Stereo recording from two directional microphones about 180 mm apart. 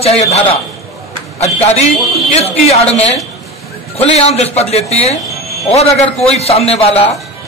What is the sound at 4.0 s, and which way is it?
A man's voice, 35° left (ahead or behind).